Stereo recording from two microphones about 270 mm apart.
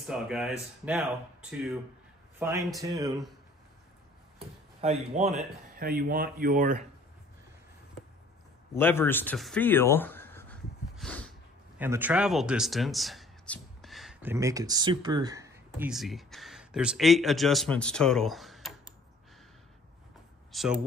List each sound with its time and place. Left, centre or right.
0.1 s speech: centre
2.3 s speech: centre
4.8 s speech: right
8.7 s a sound: centre
11.8 s speech: centre
20.5 s speech: centre